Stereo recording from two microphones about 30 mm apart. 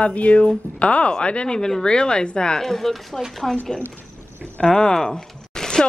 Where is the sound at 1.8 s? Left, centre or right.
Left.